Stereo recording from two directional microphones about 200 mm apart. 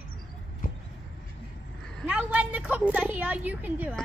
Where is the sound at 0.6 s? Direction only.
45° left (ahead or behind).